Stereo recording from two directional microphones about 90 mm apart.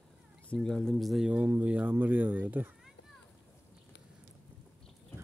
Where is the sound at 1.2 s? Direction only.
15° right (ahead or behind).